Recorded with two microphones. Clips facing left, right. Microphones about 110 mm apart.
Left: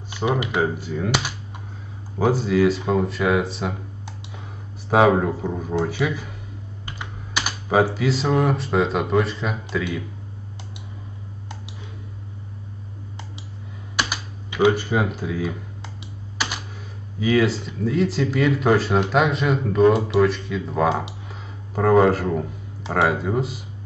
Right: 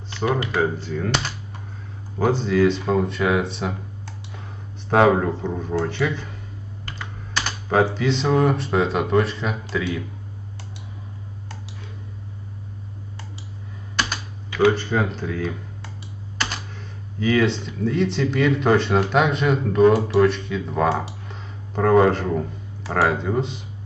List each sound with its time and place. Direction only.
0.1 s speech: 15° left (ahead or behind)
4.8 s speech: 5° left (ahead or behind)
13.9 s typing: 10° left (ahead or behind)
16.3 s computer keyboard: 10° left (ahead or behind)
17.2 s speech: 5° left (ahead or behind)
21.3 s a sound: 5° left (ahead or behind)
23.0 s speech: 5° left (ahead or behind)